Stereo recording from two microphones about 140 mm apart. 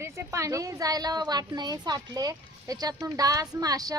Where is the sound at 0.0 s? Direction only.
20° right (ahead or behind).